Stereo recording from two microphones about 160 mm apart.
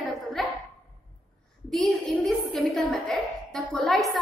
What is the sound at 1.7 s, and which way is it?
A woman's voice, centre (ahead or behind).